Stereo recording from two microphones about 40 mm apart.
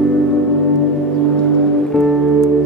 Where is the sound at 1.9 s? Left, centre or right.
Centre.